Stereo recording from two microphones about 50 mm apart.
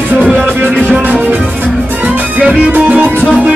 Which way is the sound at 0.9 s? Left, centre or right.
Right.